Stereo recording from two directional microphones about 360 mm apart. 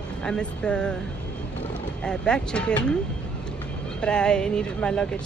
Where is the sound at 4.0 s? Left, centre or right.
Centre.